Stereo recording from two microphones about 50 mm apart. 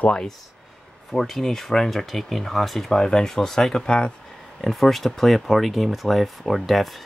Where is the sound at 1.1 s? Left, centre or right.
Centre.